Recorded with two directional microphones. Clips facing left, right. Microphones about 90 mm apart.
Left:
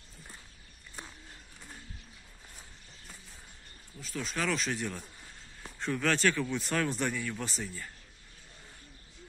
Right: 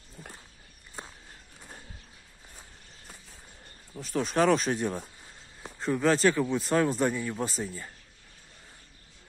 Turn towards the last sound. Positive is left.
turn(degrees=-25)  # may be behind; listen again after turning